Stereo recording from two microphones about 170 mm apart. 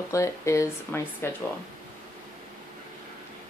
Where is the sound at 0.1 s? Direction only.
20° left (ahead or behind).